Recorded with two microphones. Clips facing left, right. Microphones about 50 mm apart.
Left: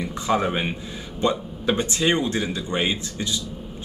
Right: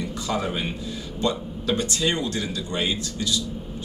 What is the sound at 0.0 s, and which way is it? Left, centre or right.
Speech, left.